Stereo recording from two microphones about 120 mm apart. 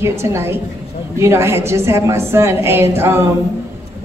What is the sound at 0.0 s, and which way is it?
A man's voice, 25° right (ahead or behind).